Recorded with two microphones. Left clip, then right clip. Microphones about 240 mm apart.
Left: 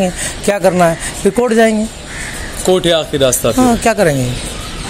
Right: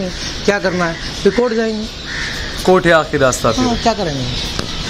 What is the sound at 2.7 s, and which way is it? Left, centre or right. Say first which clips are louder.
Speech: right 1 dB; centre.